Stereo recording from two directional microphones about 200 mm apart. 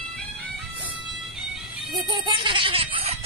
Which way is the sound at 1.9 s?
20° right (ahead or behind).